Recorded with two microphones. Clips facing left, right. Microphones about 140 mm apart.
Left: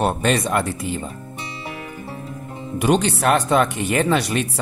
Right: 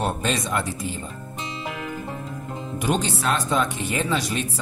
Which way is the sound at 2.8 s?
65° left (ahead or behind).